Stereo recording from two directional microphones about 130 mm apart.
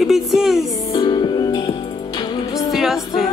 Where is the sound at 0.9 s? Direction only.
35° left (ahead or behind).